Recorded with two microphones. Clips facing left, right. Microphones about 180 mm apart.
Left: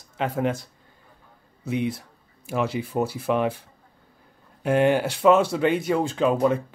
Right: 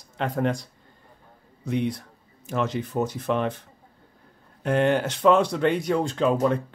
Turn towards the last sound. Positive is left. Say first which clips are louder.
# left 1 dB
turn(degrees=5)  # may be behind; listen again after turning